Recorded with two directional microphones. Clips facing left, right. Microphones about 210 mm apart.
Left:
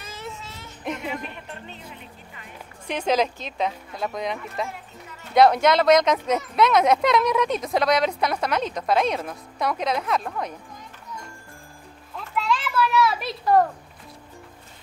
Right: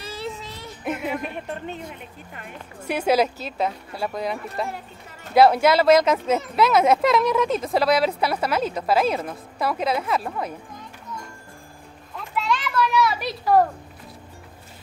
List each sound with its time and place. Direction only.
0.0 s child singing: 35° right (ahead or behind)
1.3 s speech: 50° right (ahead or behind)
2.9 s speech: 10° right (ahead or behind)
4.6 s music: 45° right (ahead or behind)
5.3 s speech: 5° right (ahead or behind)
12.4 s children playing: centre (ahead or behind)